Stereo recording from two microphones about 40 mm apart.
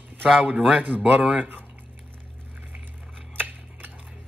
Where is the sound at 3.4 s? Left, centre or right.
Right.